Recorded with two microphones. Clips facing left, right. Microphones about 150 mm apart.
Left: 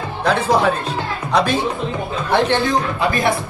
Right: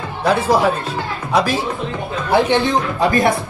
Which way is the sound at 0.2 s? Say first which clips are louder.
Right 1 dB; 10° right (ahead or behind).